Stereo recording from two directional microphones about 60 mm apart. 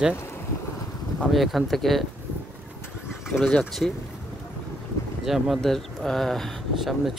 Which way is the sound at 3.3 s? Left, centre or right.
Left.